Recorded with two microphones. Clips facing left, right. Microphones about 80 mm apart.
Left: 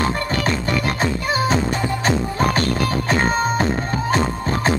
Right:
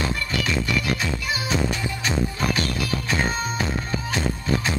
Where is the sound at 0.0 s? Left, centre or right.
Left.